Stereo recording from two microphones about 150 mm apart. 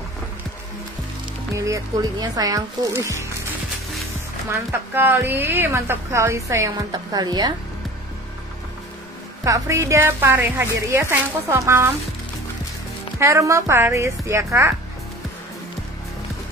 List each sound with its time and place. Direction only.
1.5 s speech: 20° right (ahead or behind)
4.5 s a woman's voice: 15° right (ahead or behind)
9.4 s a woman's voice: 20° right (ahead or behind)
13.2 s speech: 20° right (ahead or behind)